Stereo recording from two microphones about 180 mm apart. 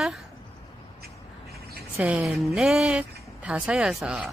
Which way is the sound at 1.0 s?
60° right (ahead or behind).